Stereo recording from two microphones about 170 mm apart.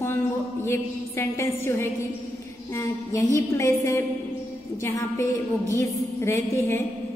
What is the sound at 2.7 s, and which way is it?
A woman's voice, 15° left (ahead or behind).